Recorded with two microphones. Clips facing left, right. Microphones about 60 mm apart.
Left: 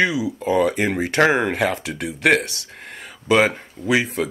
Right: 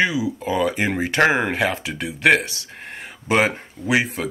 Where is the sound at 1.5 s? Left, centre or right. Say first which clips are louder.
Even; right.